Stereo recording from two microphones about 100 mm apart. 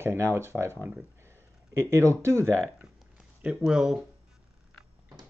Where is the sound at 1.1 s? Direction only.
25° right (ahead or behind).